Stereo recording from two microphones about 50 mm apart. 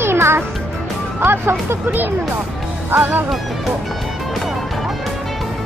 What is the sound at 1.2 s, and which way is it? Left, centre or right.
Speech, right.